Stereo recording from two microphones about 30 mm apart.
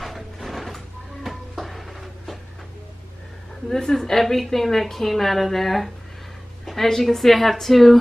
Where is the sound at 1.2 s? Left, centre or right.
Centre.